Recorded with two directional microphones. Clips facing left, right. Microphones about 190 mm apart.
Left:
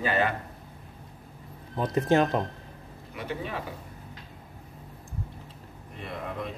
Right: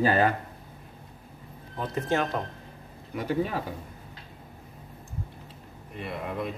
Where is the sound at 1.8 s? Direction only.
15° left (ahead or behind).